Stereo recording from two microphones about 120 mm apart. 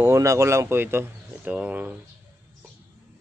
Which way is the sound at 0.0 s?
25° right (ahead or behind).